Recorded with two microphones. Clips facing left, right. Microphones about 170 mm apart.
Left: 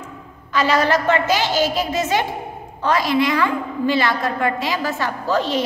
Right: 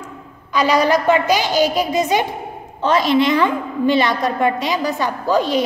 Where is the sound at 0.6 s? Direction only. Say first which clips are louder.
Right 2 dB; 15° right (ahead or behind).